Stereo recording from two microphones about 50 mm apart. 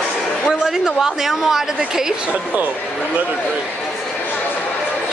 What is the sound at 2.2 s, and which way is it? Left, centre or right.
Speech, right.